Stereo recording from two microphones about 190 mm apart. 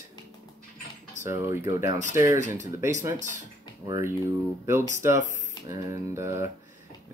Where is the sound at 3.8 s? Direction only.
15° right (ahead or behind).